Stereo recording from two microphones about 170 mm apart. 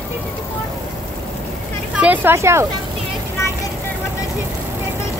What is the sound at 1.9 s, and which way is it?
Speech, 10° right (ahead or behind).